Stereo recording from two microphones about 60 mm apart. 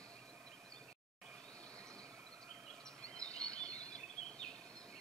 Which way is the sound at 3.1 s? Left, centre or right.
Centre.